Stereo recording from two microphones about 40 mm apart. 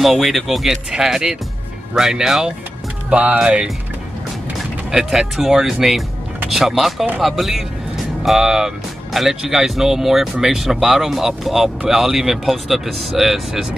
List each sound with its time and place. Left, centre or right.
0.0 s speech: centre
3.1 s speech: right
4.9 s speech: centre